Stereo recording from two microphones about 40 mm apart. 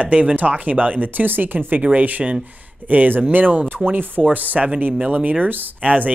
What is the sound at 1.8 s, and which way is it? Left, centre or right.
Speech, right.